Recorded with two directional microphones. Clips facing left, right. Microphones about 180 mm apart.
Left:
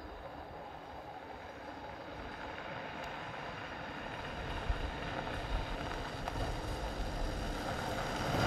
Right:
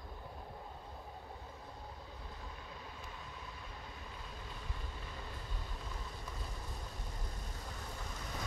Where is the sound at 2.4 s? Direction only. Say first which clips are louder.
Left 6 dB; 70° left (ahead or behind).